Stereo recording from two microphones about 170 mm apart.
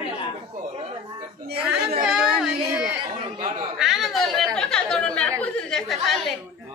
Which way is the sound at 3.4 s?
35° right (ahead or behind).